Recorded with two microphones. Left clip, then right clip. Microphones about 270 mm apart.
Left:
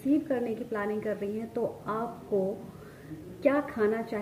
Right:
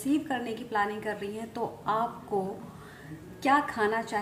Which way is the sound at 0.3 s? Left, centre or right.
Centre.